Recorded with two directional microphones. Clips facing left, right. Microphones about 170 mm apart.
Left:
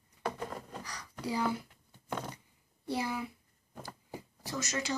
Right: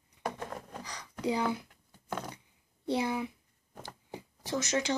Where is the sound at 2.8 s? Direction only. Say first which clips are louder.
Right 4 dB; 20° right (ahead or behind).